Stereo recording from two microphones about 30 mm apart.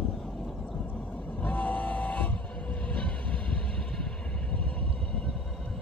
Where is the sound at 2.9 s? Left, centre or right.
Left.